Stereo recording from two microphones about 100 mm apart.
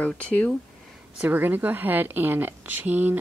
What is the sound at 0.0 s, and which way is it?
Speech, 15° left (ahead or behind).